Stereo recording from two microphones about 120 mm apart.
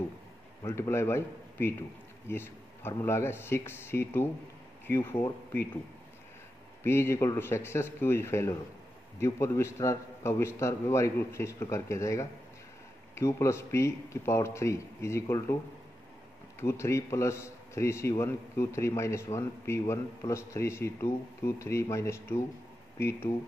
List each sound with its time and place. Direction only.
0.7 s a man's voice: 20° left (ahead or behind)
6.8 s a man's voice: 20° left (ahead or behind)
16.5 s a man's voice: 25° left (ahead or behind)